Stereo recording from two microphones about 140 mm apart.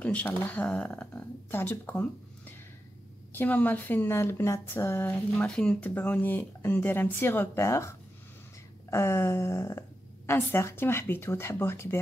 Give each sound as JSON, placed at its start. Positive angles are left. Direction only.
{"t": 0.0, "sound": "speech", "side_deg": 10}
{"t": 8.9, "sound": "a woman's voice", "side_deg": 20}